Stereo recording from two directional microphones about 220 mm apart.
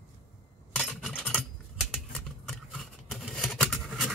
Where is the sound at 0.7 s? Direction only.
Centre (ahead or behind).